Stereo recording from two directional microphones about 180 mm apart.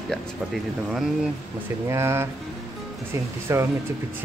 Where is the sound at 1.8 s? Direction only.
15° right (ahead or behind).